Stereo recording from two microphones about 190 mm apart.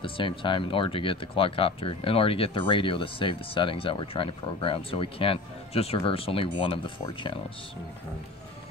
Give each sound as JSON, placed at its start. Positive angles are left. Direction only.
{"t": 0.0, "sound": "speech", "side_deg": 25}